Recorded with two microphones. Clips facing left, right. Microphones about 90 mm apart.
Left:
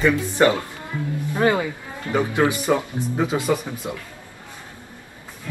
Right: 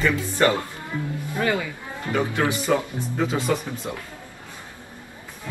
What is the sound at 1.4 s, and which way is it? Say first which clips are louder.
Speech: left 5 dB; 30° left (ahead or behind).